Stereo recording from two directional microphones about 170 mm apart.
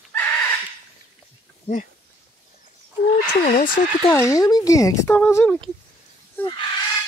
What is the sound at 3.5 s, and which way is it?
Speech, 50° left (ahead or behind).